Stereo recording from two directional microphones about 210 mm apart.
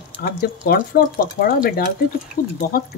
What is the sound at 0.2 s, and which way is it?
Speech, 50° left (ahead or behind).